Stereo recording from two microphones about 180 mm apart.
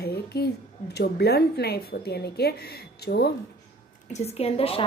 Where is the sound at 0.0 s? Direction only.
60° left (ahead or behind).